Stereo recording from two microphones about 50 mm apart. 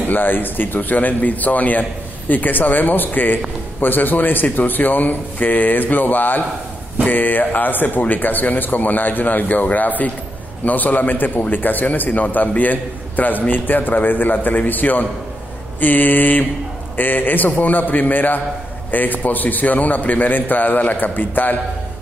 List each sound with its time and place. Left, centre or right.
0.1 s a man's voice: left